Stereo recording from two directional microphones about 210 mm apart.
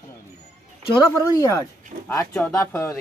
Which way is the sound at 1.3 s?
15° left (ahead or behind).